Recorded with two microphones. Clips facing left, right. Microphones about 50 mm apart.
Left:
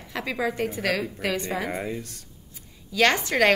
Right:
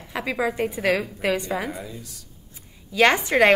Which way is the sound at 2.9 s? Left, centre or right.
Centre.